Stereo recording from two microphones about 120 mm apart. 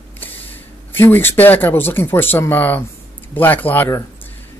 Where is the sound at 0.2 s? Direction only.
15° left (ahead or behind).